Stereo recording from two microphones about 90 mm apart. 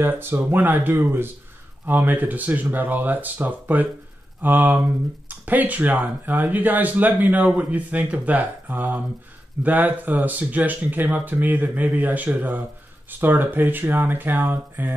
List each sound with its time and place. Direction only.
0.0 s speech: 25° right (ahead or behind)